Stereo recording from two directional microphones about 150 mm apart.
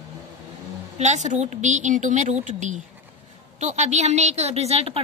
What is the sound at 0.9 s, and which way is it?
A woman's voice, 50° right (ahead or behind).